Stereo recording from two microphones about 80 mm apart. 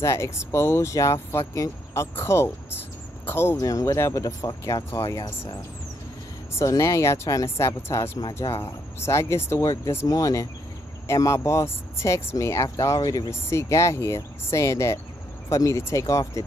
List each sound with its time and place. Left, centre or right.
0.0 s speech: left
3.5 s speech: left
6.6 s speech: left
13.5 s speech: left